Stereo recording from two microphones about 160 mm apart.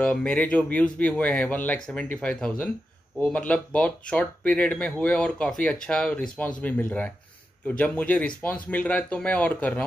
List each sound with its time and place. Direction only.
0.0 s speech: 10° left (ahead or behind)